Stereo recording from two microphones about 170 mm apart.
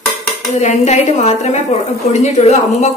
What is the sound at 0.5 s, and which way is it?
A woman's voice, 40° left (ahead or behind).